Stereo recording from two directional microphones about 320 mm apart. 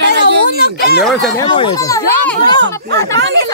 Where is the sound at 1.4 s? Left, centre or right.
Centre.